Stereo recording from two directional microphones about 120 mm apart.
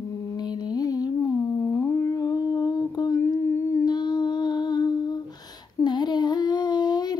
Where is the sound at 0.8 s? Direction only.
30° left (ahead or behind).